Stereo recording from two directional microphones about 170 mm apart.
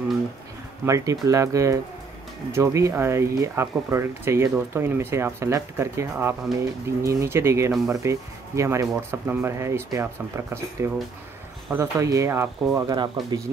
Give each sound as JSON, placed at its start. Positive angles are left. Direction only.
{"t": 0.8, "sound": "speech", "side_deg": -20}